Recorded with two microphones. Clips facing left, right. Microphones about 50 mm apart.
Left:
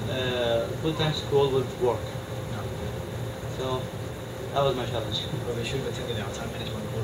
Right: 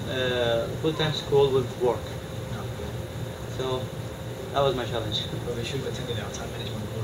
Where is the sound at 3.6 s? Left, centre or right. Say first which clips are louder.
Right 1 dB; centre.